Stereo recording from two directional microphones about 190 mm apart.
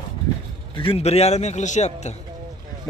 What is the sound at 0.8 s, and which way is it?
A man's voice, 30° left (ahead or behind).